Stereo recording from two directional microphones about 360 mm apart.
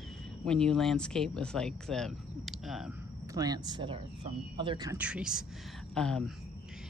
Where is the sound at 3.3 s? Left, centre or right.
Centre.